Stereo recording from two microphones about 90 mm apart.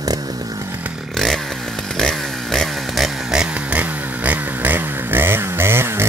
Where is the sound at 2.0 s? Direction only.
5° left (ahead or behind).